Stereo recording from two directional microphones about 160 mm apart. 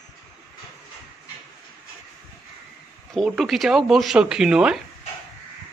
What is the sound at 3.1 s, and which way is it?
Speech, centre (ahead or behind).